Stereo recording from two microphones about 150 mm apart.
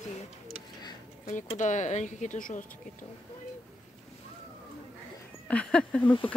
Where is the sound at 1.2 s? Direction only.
55° left (ahead or behind).